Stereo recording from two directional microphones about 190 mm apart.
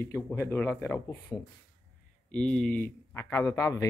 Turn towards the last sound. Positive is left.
turn(degrees=15)  # may be behind; listen again after turning